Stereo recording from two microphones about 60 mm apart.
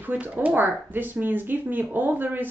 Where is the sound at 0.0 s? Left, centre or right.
Right.